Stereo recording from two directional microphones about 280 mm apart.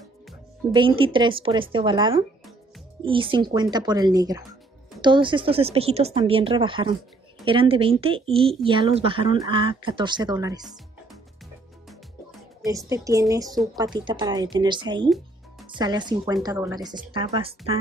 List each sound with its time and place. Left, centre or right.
0.7 s speech: centre
12.6 s speech: centre